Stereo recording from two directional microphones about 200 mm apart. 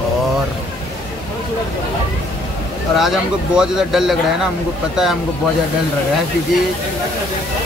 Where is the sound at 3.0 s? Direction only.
Centre (ahead or behind).